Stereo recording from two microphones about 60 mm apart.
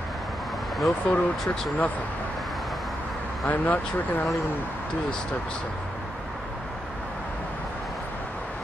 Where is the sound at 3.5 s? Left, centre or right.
Left.